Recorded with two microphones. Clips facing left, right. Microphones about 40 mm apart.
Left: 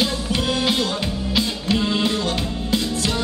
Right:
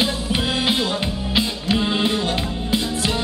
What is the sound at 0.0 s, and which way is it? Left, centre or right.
Music, centre.